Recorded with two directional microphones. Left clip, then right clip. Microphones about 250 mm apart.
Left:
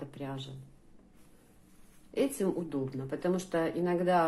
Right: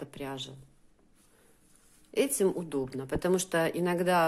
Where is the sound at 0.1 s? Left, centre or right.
Right.